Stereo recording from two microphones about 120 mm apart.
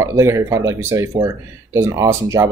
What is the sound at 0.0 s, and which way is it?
Speech, 25° right (ahead or behind).